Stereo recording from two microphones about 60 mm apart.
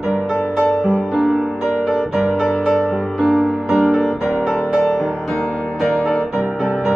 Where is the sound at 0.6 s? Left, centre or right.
Centre.